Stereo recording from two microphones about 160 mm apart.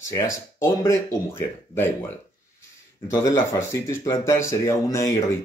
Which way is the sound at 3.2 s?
20° left (ahead or behind).